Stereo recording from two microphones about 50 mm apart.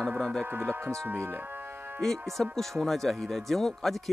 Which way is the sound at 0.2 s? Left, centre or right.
Centre.